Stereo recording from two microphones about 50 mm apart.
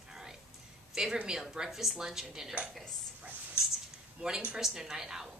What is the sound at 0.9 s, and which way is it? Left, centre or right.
A woman's voice, centre.